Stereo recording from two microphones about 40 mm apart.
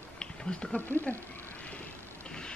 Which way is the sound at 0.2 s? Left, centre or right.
Centre.